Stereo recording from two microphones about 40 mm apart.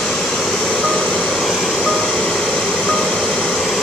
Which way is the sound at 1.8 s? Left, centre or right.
Centre.